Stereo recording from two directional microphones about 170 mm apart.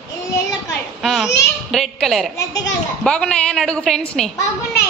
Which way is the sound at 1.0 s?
Centre (ahead or behind).